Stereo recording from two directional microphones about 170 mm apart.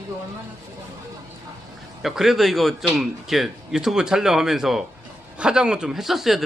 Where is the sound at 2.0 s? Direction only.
Centre (ahead or behind).